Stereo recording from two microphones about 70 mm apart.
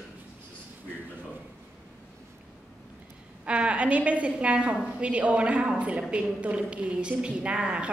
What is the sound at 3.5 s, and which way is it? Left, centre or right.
A woman's voice, centre.